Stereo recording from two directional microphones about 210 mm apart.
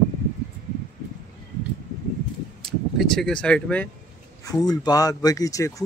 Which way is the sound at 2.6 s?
Centre (ahead or behind).